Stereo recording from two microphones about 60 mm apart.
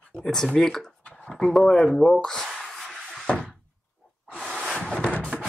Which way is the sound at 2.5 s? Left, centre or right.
Centre.